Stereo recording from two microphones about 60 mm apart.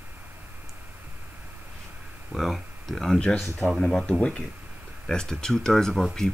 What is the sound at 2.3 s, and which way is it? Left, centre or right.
Speech, centre.